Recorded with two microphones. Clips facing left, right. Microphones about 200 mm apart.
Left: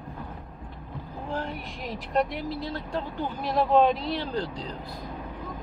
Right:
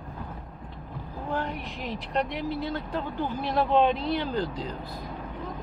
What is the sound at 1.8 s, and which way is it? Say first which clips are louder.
Speech: left 3 dB; centre (ahead or behind).